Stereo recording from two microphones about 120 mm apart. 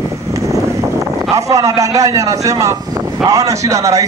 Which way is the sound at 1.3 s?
30° right (ahead or behind).